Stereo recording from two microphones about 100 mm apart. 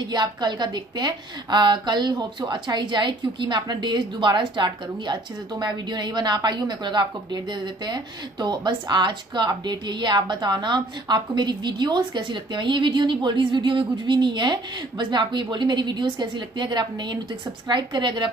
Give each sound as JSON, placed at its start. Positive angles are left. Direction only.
{"t": 0.1, "sound": "a woman's voice", "side_deg": -45}